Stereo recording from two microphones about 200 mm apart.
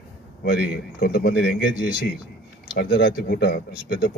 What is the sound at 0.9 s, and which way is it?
Speech, 50° left (ahead or behind).